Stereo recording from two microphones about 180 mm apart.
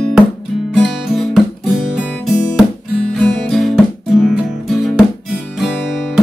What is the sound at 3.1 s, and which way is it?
Music, centre (ahead or behind).